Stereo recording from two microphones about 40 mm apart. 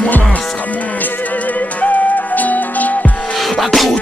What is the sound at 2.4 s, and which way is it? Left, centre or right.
Music, left.